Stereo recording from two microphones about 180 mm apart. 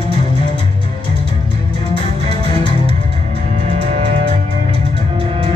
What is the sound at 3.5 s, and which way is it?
Music, 35° right (ahead or behind).